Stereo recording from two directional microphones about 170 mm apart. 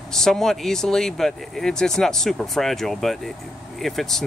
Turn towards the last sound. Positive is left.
turn(degrees=0)  # may be behind; listen again after turning